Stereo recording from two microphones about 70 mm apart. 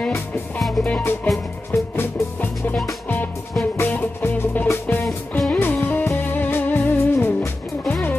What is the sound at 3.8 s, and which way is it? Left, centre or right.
Music, left.